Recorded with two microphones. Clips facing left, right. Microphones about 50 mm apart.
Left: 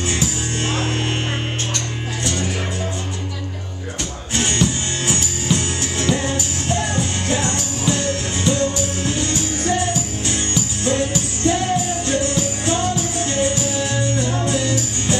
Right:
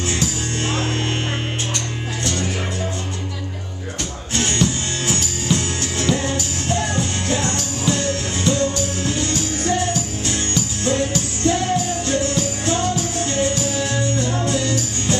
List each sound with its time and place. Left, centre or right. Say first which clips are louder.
0.0 s music: even; centre
4.3 s music: even; centre